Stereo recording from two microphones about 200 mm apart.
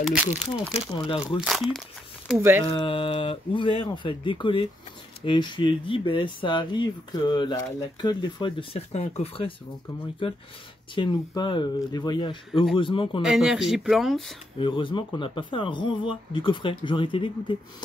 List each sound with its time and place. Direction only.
0.0 s speech: 5° right (ahead or behind)
0.7 s speech: 25° left (ahead or behind)
1.4 s speech: centre (ahead or behind)
2.6 s speech: 25° left (ahead or behind)
11.0 s speech: 20° left (ahead or behind)
13.2 s speech: 5° right (ahead or behind)
14.6 s speech: 25° left (ahead or behind)